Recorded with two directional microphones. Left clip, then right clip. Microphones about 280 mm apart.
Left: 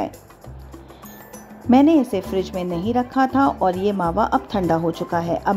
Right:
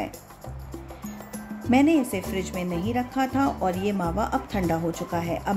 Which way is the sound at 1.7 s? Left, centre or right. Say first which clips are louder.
Left 6 dB; centre.